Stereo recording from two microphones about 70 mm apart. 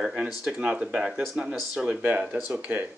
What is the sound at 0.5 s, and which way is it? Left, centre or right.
Speech, centre.